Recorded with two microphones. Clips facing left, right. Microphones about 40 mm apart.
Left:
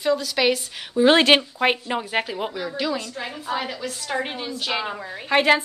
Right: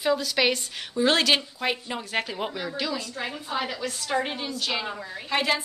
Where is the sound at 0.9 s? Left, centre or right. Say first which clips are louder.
Left 6 dB; left.